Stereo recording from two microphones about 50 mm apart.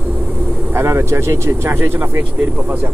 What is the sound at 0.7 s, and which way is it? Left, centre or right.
Speech, right.